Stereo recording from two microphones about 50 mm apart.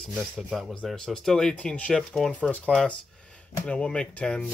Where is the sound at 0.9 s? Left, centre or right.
Centre.